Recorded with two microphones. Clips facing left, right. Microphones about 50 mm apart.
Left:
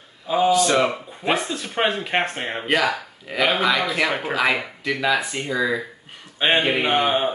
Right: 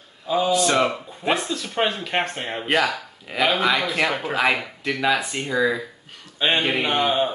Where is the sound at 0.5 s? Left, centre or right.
Centre.